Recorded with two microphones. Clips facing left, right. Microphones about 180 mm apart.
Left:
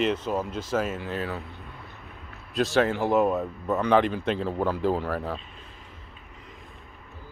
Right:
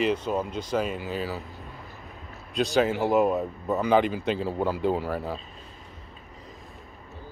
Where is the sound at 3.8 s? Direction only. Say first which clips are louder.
Even; 5° right (ahead or behind).